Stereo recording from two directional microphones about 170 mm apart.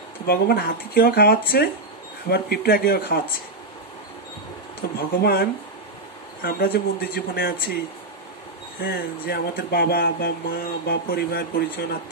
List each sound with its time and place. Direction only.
0.2 s speech: 70° left (ahead or behind)
4.9 s speech: 65° left (ahead or behind)
8.8 s speech: 60° left (ahead or behind)